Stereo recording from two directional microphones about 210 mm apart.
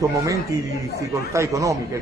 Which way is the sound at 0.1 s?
15° right (ahead or behind).